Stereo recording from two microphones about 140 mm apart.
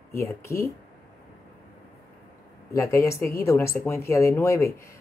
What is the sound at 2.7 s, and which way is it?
Speech, 20° left (ahead or behind).